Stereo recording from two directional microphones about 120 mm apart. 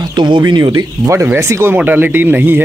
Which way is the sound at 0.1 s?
40° right (ahead or behind).